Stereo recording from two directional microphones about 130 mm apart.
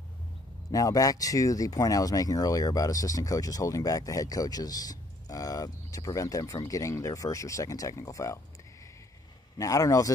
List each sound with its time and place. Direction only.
0.7 s speech: 25° left (ahead or behind)
9.6 s speech: 25° left (ahead or behind)